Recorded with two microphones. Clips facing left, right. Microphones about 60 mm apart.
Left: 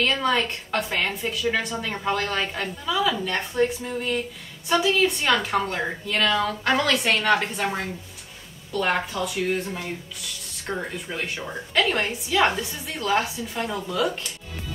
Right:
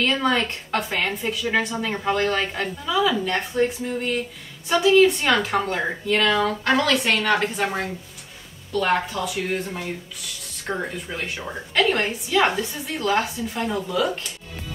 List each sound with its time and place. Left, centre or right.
0.0 s a woman's voice: centre